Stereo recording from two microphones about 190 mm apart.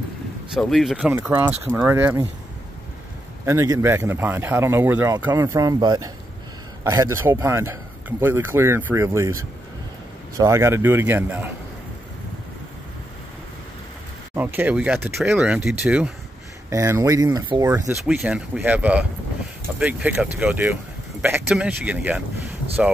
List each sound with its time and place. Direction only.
0.6 s speech: centre (ahead or behind)
1.5 s a man's voice: 10° right (ahead or behind)
3.4 s a man's voice: 15° right (ahead or behind)
10.3 s a man's voice: 15° right (ahead or behind)
14.3 s a man's voice: 10° right (ahead or behind)
16.7 s speech: 15° right (ahead or behind)
18.0 s a man's voice: 5° right (ahead or behind)